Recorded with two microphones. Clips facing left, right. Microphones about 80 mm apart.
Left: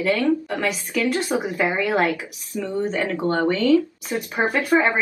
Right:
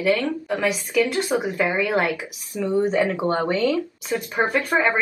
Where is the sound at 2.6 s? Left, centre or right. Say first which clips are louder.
Right 4 dB; centre.